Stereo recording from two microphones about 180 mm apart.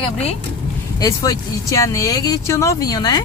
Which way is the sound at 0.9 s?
20° left (ahead or behind).